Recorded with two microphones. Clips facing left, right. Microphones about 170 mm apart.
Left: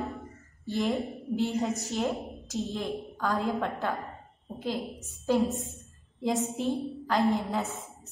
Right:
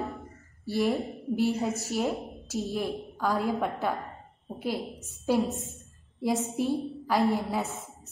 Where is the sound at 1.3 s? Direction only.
Centre (ahead or behind).